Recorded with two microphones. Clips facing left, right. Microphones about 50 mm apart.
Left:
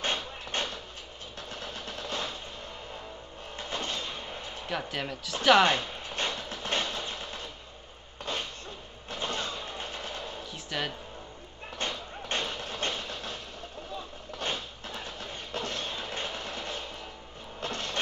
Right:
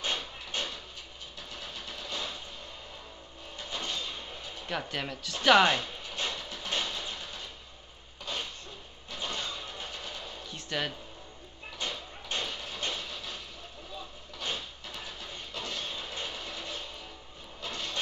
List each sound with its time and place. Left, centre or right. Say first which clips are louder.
0.0 s a sound: left 2 dB; left
1.5 s vehicle: left 3 dB; left
3.5 s music: left 2 dB; left
4.6 s speech: left 1 dB; centre
5.8 s a sound: left 2 dB; left
9.1 s music: left 3 dB; left
10.5 s music: right 1 dB; centre
11.8 s a sound: left 3 dB; left
14.4 s music: left 2 dB; left
17.6 s vehicle: left 3 dB; left